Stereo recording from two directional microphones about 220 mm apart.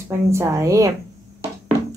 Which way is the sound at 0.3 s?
15° right (ahead or behind).